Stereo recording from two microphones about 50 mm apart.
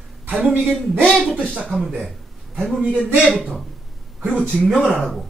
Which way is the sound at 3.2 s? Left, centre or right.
Centre.